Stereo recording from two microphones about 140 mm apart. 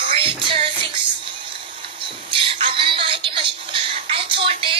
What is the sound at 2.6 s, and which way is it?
Music, 40° right (ahead or behind).